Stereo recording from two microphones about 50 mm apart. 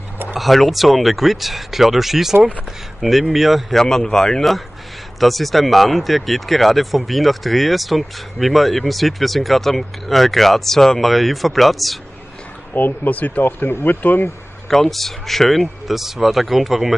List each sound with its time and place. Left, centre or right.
0.4 s speech: centre
3.7 s speech: centre
12.7 s speech: left
13.5 s speech: left
14.7 s speech: centre